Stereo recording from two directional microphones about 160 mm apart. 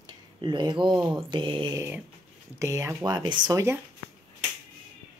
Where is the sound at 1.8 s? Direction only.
15° right (ahead or behind).